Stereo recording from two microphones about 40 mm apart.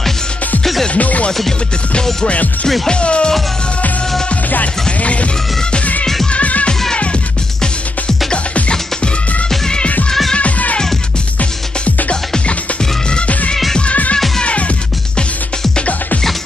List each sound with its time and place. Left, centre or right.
0.9 s music: left
5.0 s music: left
8.5 s music: left
10.3 s music: left
14.4 s music: left